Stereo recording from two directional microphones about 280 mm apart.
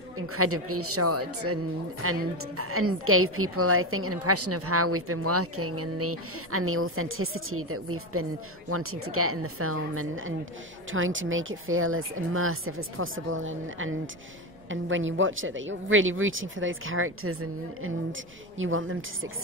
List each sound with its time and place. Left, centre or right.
0.3 s a woman's voice: right